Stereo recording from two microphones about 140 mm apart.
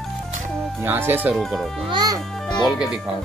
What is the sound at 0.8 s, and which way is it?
Speech, 15° right (ahead or behind).